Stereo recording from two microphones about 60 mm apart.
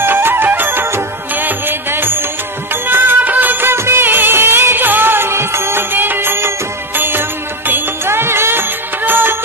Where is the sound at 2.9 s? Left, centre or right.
Right.